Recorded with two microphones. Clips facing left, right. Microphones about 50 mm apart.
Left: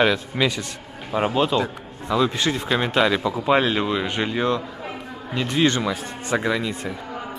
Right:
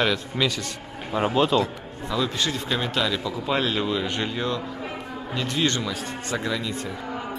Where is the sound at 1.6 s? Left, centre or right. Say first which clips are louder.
Left 1 dB; left.